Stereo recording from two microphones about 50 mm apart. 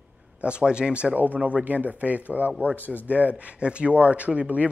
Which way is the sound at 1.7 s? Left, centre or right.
Right.